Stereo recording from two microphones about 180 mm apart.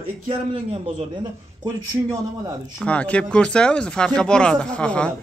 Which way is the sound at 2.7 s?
5° left (ahead or behind).